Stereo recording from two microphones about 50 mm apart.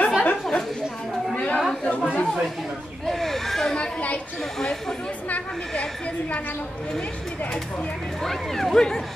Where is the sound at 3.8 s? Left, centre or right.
Left.